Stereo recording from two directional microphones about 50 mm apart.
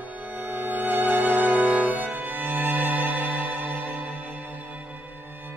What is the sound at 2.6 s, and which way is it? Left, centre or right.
Violin, right.